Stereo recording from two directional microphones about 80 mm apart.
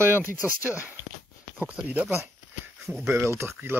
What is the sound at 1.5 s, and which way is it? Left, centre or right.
Speech, centre.